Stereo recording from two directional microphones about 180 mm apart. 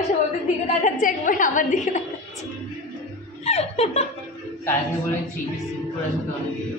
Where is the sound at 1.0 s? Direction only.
45° left (ahead or behind).